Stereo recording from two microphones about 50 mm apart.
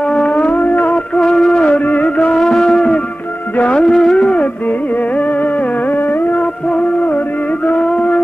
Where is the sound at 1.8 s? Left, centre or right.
Left.